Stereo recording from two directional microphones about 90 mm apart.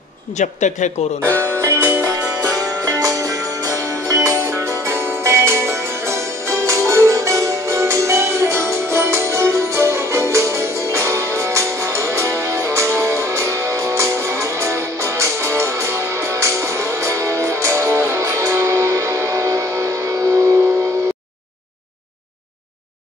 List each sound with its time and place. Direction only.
1.2 s music: 30° right (ahead or behind)